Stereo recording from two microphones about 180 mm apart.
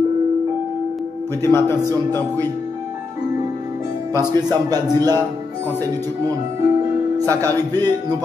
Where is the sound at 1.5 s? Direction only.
15° left (ahead or behind).